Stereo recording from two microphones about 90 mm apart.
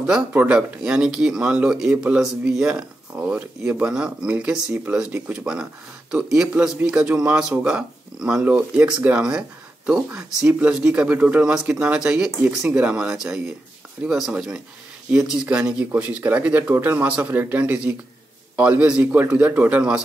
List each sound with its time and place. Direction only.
0.0 s speech: 15° right (ahead or behind)